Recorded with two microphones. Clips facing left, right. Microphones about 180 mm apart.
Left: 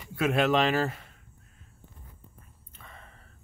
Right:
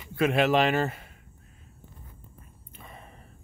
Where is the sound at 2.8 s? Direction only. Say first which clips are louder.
Right 4 dB; 15° right (ahead or behind).